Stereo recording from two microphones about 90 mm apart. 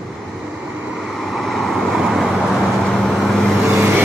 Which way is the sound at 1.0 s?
Centre (ahead or behind).